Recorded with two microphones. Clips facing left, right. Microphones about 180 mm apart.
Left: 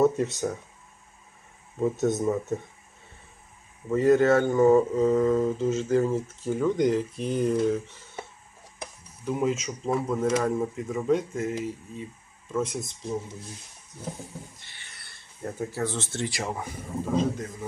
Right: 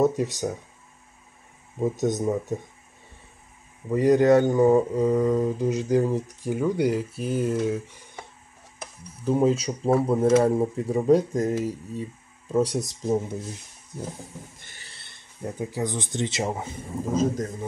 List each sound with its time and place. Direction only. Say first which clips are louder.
0.2 s mantra: right 1 dB; 15° right (ahead or behind)
2.0 s mantra: right 1 dB; 15° right (ahead or behind)
3.9 s mantra: right 2 dB; 15° right (ahead or behind)
9.2 s speech: right 5 dB; 30° right (ahead or behind)
14.6 s a sound: right 3 dB; 45° right (ahead or behind)
14.9 s filing: right 1 dB; 25° right (ahead or behind)
15.4 s mantra: right 1 dB; 15° right (ahead or behind)
17.1 s speech: right 3 dB; 40° right (ahead or behind)